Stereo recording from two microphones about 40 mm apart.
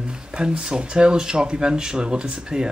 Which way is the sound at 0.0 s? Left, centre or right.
Right.